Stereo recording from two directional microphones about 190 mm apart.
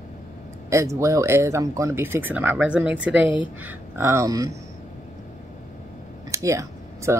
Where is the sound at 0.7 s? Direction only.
15° right (ahead or behind).